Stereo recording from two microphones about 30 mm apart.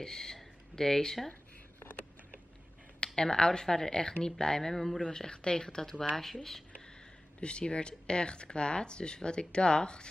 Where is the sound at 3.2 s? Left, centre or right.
Left.